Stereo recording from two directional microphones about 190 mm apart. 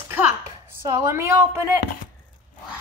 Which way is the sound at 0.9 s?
15° right (ahead or behind).